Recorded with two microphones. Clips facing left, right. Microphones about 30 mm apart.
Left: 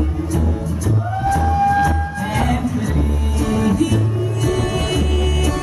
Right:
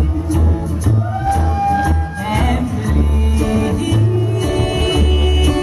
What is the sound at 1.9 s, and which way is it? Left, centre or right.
Music, centre.